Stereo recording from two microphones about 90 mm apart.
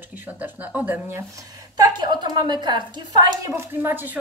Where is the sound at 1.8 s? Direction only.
55° right (ahead or behind).